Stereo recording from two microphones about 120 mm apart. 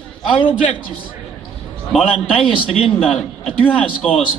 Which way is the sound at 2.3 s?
50° left (ahead or behind).